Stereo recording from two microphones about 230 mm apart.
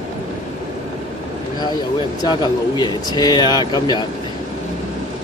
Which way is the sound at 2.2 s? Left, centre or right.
Centre.